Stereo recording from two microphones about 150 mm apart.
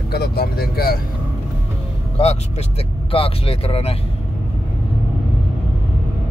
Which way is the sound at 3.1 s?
40° left (ahead or behind).